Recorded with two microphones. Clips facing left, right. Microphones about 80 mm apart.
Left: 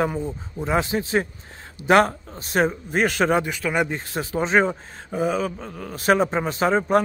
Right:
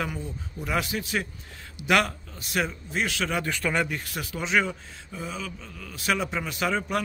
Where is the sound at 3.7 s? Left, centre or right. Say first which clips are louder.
Left 4 dB; left.